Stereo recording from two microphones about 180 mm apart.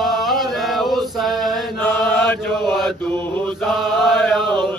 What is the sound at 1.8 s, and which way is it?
Chant, 10° left (ahead or behind).